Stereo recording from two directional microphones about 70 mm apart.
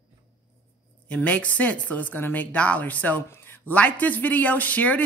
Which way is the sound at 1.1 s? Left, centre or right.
Centre.